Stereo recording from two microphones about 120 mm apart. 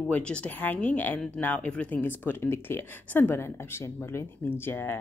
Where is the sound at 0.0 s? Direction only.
10° left (ahead or behind).